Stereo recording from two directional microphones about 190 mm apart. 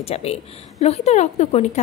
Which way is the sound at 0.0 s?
35° left (ahead or behind).